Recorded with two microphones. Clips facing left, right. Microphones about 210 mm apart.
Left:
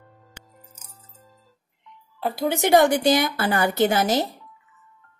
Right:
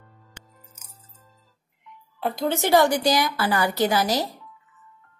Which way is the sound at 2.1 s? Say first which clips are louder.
Even; centre (ahead or behind).